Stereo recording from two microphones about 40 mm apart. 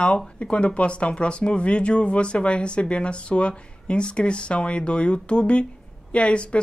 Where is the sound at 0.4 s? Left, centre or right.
Left.